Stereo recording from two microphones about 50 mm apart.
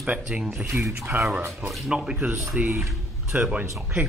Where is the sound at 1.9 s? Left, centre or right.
Centre.